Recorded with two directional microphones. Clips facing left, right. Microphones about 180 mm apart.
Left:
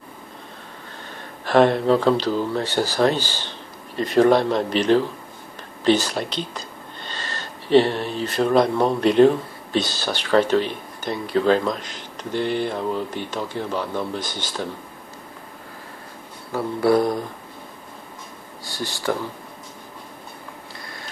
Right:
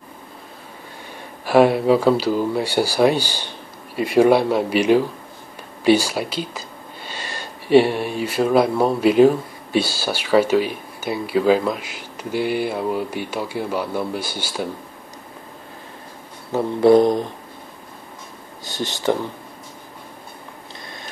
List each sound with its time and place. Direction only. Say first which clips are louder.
1.4 s speech: right 2 dB; 10° right (ahead or behind)
16.5 s speech: right 5 dB; 20° right (ahead or behind)
18.6 s speech: right 3 dB; 20° right (ahead or behind)